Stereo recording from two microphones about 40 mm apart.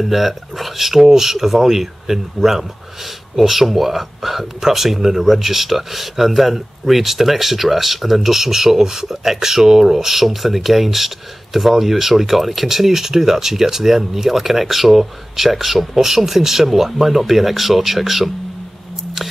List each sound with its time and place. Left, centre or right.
0.0 s speech: centre